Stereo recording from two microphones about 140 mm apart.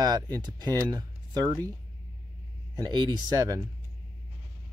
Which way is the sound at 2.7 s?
30° right (ahead or behind).